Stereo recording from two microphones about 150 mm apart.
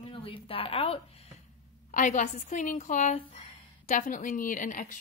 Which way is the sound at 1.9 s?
60° left (ahead or behind).